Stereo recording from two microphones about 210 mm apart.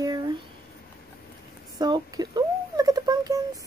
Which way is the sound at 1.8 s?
20° right (ahead or behind).